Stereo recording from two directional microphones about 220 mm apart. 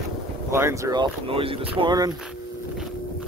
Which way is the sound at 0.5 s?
10° right (ahead or behind).